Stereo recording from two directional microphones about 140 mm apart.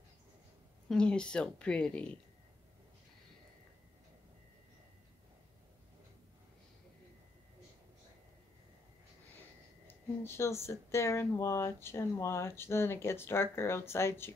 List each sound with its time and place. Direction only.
0.8 s speech: 5° left (ahead or behind)
10.2 s speech: 20° left (ahead or behind)